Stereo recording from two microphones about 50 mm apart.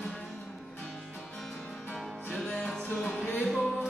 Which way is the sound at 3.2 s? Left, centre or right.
Left.